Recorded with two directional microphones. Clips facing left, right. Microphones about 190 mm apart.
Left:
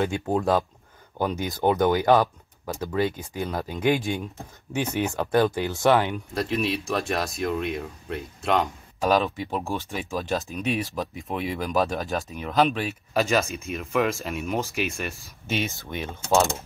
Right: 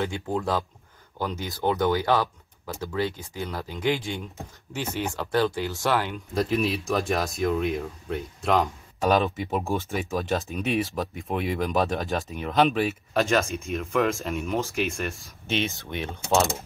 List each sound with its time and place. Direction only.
0.0 s speech: 15° left (ahead or behind)
6.3 s speech: centre (ahead or behind)